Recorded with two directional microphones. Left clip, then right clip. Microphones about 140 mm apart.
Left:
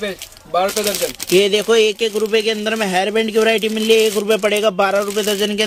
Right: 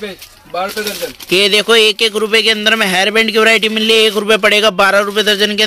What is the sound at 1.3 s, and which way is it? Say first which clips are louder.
A man's voice: right 4 dB; 10° right (ahead or behind).